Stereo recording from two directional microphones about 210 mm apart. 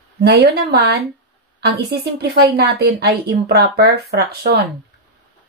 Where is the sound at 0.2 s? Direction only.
50° right (ahead or behind).